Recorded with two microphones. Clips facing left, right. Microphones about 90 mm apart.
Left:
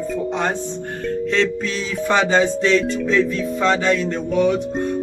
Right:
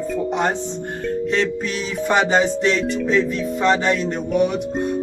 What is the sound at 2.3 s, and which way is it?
Music, 20° right (ahead or behind).